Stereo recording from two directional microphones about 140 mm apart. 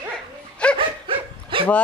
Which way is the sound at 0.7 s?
40° right (ahead or behind).